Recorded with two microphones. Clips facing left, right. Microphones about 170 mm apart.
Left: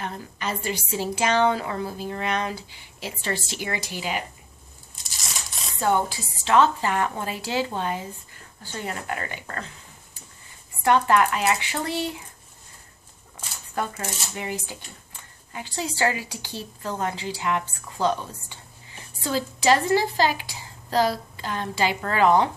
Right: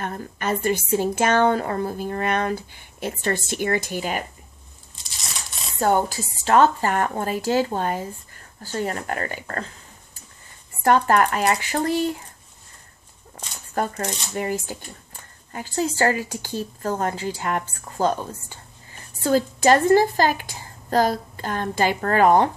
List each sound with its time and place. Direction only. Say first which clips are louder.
0.0 s speech: right 3 dB; 50° right (ahead or behind)
5.0 s tearing: even; centre (ahead or behind)
5.8 s speech: right 3 dB; 45° right (ahead or behind)
10.8 s speech: right 2 dB; 45° right (ahead or behind)
13.7 s speech: right 4 dB; 45° right (ahead or behind)